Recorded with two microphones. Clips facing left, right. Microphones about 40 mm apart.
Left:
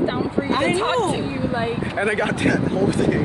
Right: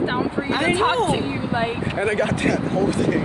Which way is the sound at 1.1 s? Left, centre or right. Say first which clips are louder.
Even; right.